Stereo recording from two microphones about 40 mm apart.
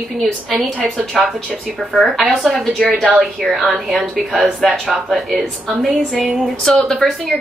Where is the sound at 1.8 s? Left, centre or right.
Centre.